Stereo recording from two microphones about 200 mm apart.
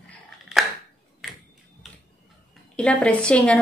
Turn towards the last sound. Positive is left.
turn(degrees=5)  # may be behind; listen again after turning